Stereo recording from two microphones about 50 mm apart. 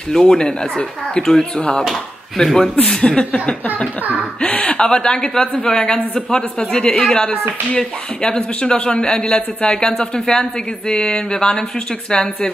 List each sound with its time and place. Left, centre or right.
0.1 s a man's voice: centre
2.7 s a man's voice: left